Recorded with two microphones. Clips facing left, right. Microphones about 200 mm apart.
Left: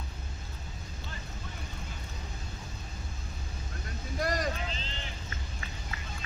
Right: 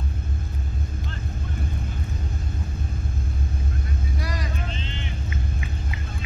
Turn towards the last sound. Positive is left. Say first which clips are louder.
# right 6 dB
turn(degrees=35)  # may be behind; listen again after turning